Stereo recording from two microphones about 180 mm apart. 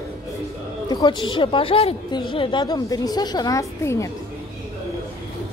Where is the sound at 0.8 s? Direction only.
25° left (ahead or behind).